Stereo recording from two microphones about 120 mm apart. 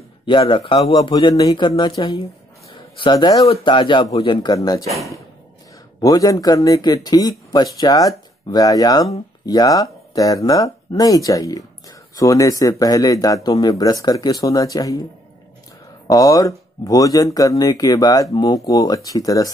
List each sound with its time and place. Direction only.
0.2 s a man's voice: 45° left (ahead or behind)
1.3 s speech: 35° left (ahead or behind)
4.6 s speech: 30° left (ahead or behind)
5.9 s speech: 30° left (ahead or behind)
16.1 s speech: 30° left (ahead or behind)